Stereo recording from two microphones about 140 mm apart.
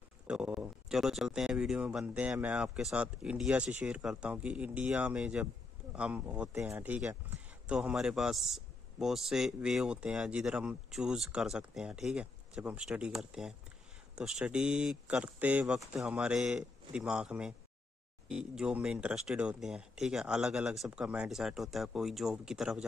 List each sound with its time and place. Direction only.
0.3 s speech: 5° right (ahead or behind)